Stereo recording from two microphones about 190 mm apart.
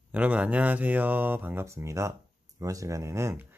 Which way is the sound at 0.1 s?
10° right (ahead or behind).